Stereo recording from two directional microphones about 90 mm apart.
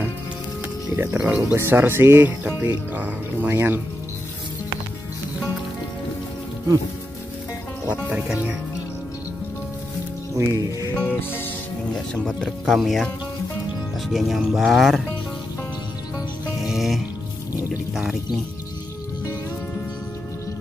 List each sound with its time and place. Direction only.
1.1 s speech: 15° right (ahead or behind)
10.3 s music: 40° right (ahead or behind)
11.0 s music: 20° left (ahead or behind)
12.1 s speech: 10° left (ahead or behind)
16.5 s music: 5° right (ahead or behind)
17.9 s speech: 5° right (ahead or behind)